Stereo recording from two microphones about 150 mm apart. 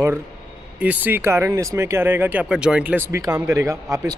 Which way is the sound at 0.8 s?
10° right (ahead or behind).